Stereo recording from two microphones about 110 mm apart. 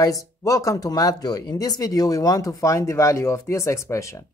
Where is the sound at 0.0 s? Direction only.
30° left (ahead or behind).